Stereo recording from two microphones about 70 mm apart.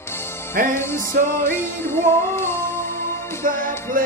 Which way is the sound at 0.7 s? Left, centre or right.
Left.